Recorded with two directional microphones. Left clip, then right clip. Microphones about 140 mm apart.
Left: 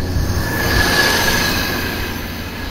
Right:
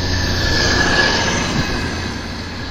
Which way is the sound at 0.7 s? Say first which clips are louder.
Left 2 dB; 90° right.